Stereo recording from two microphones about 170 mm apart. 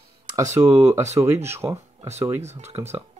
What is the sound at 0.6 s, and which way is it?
Speech, 10° right (ahead or behind).